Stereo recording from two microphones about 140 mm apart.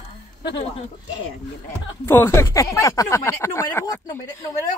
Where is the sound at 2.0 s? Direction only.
15° left (ahead or behind).